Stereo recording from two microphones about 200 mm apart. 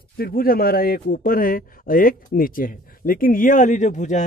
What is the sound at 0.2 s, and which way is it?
Speech, 50° left (ahead or behind).